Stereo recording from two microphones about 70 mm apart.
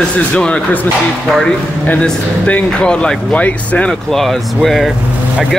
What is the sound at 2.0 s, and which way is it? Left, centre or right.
Speech, centre.